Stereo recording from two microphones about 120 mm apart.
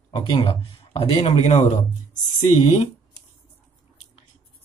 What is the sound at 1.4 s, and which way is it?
Speech, 65° left (ahead or behind).